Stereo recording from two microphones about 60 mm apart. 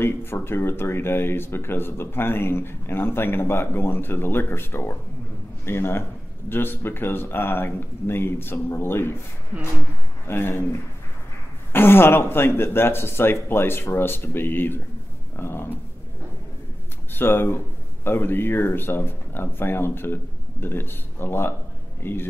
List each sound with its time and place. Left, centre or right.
0.0 s speech: left
10.2 s a man's voice: left
17.1 s speech: left